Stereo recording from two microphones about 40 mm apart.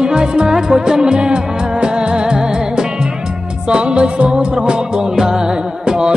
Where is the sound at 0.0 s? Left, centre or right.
Centre.